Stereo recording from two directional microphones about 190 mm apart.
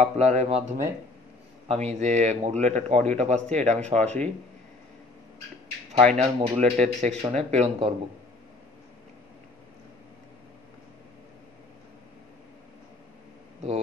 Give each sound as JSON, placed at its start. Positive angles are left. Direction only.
{"t": 0.0, "sound": "a man's voice", "side_deg": -35}
{"t": 5.9, "sound": "a man's voice", "side_deg": -35}